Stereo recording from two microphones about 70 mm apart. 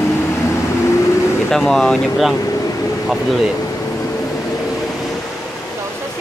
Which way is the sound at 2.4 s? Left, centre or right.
Left.